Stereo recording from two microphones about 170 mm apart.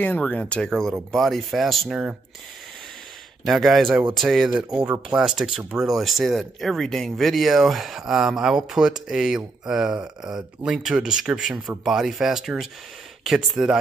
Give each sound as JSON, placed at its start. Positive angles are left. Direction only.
{"t": 0.0, "sound": "speech", "side_deg": 10}
{"t": 3.4, "sound": "speech", "side_deg": 0}